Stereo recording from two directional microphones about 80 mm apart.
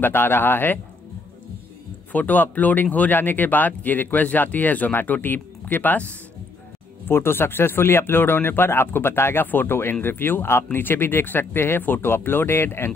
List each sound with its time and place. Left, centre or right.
0.0 s speech: left
2.1 s speech: left